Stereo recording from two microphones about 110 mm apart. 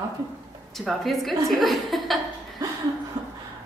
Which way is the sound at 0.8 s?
Centre (ahead or behind).